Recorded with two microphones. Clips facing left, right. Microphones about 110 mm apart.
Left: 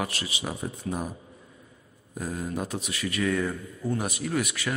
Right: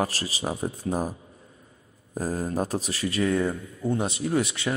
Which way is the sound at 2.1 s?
40° right (ahead or behind).